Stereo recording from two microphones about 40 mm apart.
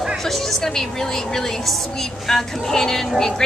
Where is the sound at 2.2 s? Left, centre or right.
Centre.